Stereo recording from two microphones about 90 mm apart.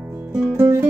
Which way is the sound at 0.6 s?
30° right (ahead or behind).